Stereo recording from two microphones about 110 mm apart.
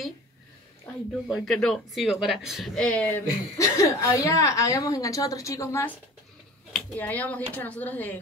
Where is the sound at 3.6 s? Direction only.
30° left (ahead or behind).